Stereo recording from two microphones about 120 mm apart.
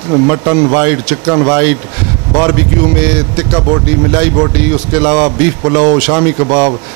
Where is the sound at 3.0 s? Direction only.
10° right (ahead or behind).